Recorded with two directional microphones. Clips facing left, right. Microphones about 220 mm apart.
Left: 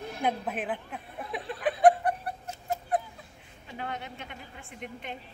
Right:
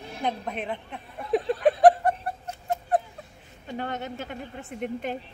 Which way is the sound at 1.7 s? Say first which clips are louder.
Right 3 dB; 45° right (ahead or behind).